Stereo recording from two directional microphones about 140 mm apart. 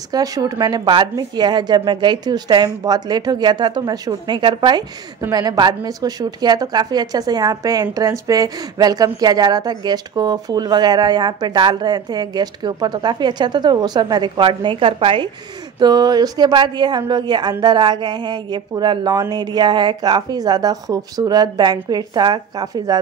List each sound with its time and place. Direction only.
0.1 s a woman's voice: 25° right (ahead or behind)
15.8 s a woman's voice: 30° right (ahead or behind)